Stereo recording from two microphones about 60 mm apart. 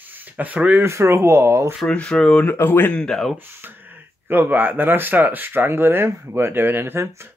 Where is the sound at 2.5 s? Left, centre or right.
Left.